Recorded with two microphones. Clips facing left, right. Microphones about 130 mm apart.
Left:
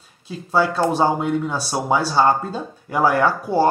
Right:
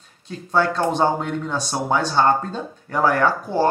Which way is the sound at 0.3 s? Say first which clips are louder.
Left 1 dB; 5° left (ahead or behind).